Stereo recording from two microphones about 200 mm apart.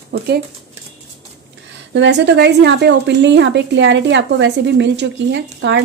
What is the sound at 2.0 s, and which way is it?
A woman's voice, 60° right (ahead or behind).